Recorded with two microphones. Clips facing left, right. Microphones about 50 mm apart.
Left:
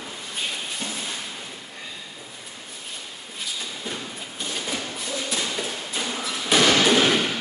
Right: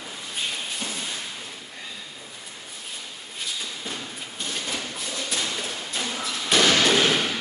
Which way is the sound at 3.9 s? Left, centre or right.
Centre.